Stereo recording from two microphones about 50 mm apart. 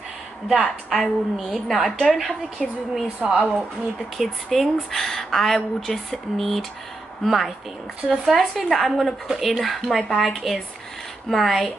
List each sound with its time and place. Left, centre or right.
0.5 s speech: centre
1.9 s a woman's voice: centre
2.6 s speech: centre
3.2 s speech: right
4.2 s speech: centre